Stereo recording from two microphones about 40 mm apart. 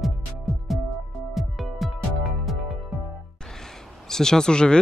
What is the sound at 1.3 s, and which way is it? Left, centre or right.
Music, centre.